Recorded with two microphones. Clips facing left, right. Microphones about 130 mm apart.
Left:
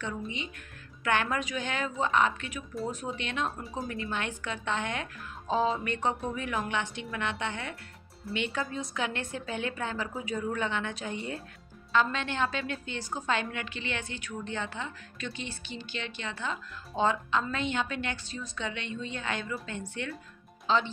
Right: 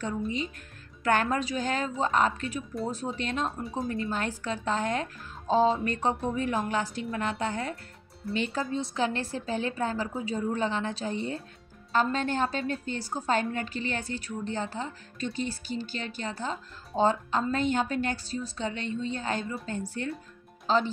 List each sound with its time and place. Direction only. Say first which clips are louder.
1.0 s a woman's voice: right 3 dB; 35° right (ahead or behind)
3.4 s speech: right 3 dB; centre (ahead or behind)
3.9 s a woman's voice: right 3 dB; 35° right (ahead or behind)
11.9 s a woman's voice: right 2 dB; 40° right (ahead or behind)